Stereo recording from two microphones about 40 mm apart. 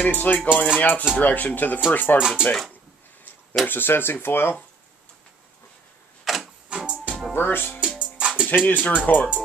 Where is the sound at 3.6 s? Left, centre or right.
Left.